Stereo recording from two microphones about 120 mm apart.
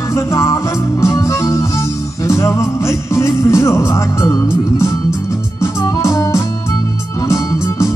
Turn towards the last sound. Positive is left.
turn(degrees=25)  # may be behind; listen again after turning